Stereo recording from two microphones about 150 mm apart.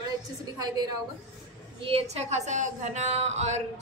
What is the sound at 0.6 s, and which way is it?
Speech, 25° right (ahead or behind).